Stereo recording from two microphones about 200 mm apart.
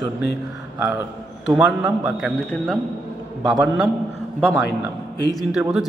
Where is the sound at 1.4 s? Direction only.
5° right (ahead or behind).